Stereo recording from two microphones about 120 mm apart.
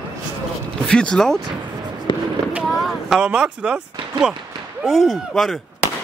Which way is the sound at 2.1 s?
40° left (ahead or behind).